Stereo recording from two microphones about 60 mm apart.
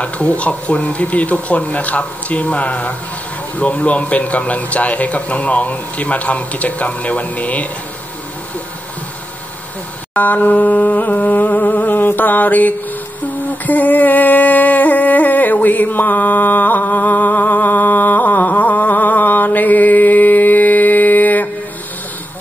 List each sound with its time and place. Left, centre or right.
0.0 s a man's voice: left
10.1 s a sound: left
13.5 s music: left